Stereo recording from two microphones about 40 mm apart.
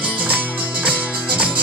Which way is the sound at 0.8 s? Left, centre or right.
Right.